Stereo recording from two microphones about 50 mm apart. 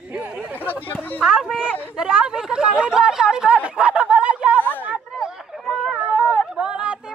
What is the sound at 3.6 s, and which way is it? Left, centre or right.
Snicker, right.